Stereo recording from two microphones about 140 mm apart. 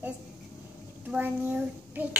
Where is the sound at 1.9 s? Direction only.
10° right (ahead or behind).